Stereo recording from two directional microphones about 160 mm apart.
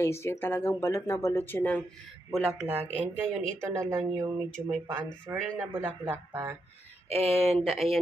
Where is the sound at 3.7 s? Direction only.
15° right (ahead or behind).